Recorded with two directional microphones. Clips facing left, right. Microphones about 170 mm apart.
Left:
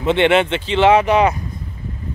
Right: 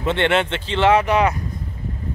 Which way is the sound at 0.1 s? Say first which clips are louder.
Left 5 dB; 15° left (ahead or behind).